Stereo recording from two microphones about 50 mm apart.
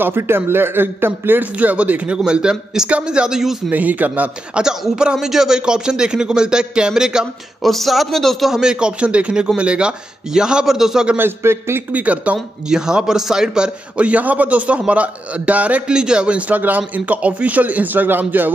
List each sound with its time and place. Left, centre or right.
0.0 s a man's voice: right
1.4 s speech: right
2.1 s speech: centre
3.7 s a man's voice: right
5.1 s speech: centre
7.6 s a man's voice: centre
8.5 s speech: centre
11.1 s a man's voice: right
11.9 s a man's voice: right
12.6 s speech: centre
13.9 s a man's voice: right
15.9 s speech: centre; by 18.5 s right